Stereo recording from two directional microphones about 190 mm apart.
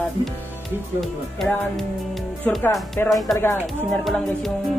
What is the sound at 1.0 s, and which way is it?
Music, centre (ahead or behind).